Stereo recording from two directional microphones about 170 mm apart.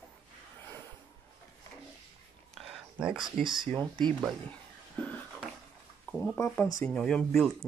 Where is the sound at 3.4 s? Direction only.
30° right (ahead or behind).